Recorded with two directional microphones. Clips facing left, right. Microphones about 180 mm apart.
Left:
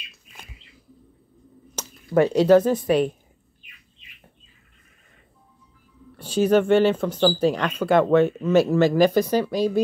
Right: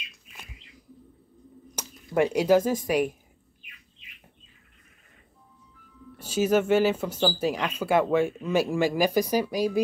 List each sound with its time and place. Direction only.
1.8 s speech: 10° right (ahead or behind)
6.1 s speech: 10° right (ahead or behind)